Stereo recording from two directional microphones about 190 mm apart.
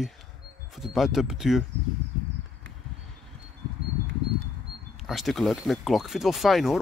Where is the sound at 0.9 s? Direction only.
Centre (ahead or behind).